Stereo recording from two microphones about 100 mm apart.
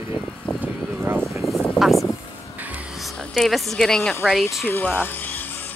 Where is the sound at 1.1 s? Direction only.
25° right (ahead or behind).